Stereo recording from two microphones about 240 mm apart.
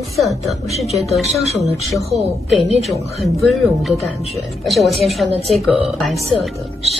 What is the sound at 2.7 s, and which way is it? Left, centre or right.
Speech, centre.